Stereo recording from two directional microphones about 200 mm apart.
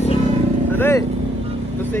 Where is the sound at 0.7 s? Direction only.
10° left (ahead or behind).